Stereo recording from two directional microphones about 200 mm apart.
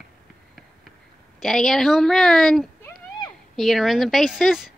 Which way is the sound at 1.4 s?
Centre (ahead or behind).